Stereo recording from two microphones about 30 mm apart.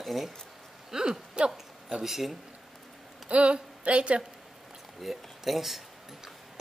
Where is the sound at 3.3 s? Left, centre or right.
Right.